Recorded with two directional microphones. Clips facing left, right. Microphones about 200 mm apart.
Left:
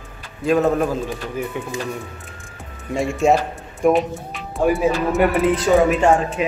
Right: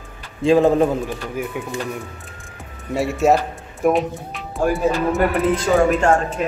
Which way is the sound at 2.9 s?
5° right (ahead or behind).